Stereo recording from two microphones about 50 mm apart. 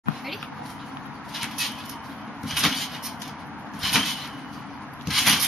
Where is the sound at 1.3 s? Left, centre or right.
Centre.